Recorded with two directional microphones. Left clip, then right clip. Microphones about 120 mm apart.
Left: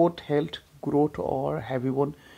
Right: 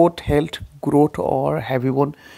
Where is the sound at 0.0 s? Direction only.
50° right (ahead or behind).